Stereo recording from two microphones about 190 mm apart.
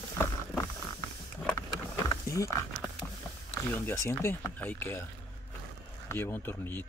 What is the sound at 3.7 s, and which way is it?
Speech, 10° left (ahead or behind).